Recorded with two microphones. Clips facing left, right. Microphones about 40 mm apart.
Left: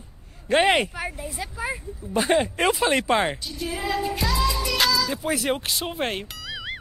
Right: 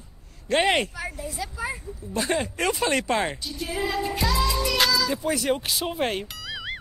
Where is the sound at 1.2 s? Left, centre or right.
Left.